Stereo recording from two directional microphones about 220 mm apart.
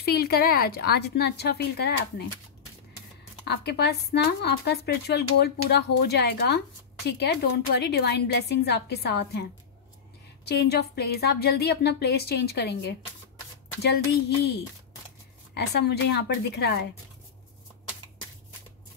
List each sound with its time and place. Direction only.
0.0 s speech: 45° left (ahead or behind)
3.4 s speech: 45° left (ahead or behind)
13.9 s speech: 45° left (ahead or behind)